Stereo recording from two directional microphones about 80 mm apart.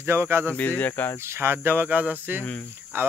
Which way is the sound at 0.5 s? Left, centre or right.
Left.